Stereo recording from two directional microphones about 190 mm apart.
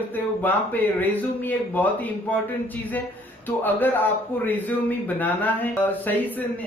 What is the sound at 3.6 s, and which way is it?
A man's voice, 10° left (ahead or behind).